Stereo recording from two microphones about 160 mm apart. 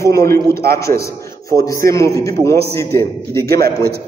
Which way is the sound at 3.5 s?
75° right (ahead or behind).